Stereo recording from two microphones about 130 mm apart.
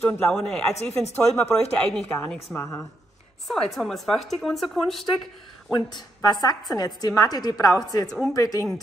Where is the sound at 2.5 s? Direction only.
25° left (ahead or behind).